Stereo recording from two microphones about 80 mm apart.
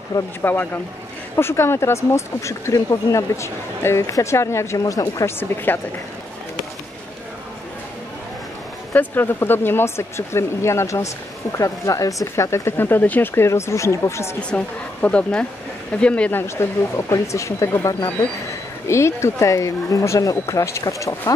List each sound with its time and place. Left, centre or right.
0.4 s speech: left
5.2 s speech: left
8.9 s speech: left
13.3 s speech: left
14.5 s a woman's voice: centre
16.3 s speech: left
18.9 s speech: left